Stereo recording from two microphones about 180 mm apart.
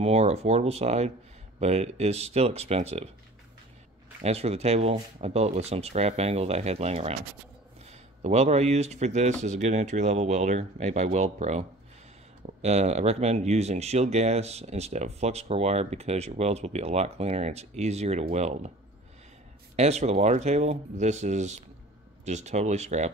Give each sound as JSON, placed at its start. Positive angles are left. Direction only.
{"t": 0.0, "sound": "speech", "side_deg": -35}
{"t": 4.2, "sound": "speech", "side_deg": -35}
{"t": 19.7, "sound": "speech", "side_deg": -35}